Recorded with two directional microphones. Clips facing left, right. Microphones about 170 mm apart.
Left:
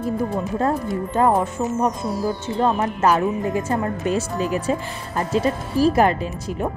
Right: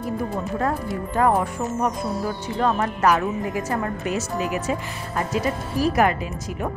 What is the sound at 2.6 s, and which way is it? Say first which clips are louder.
Speech: left 1 dB; 25° left (ahead or behind).